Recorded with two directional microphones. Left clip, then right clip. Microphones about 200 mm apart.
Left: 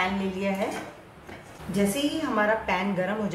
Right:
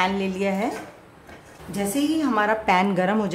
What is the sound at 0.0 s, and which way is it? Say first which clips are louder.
Speech: right 5 dB; 55° right (ahead or behind).